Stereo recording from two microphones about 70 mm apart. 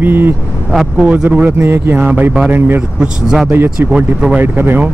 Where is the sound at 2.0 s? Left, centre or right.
Centre.